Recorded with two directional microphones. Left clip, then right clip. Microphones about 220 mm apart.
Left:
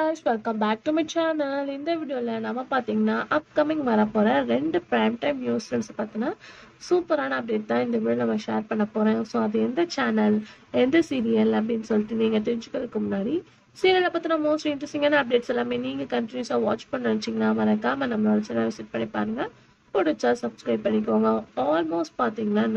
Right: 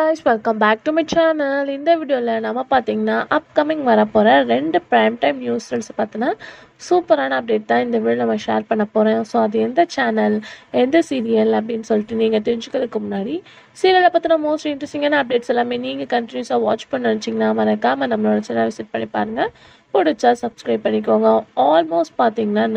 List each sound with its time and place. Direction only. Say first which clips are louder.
0.0 s a woman's voice: right 8 dB; 25° right (ahead or behind)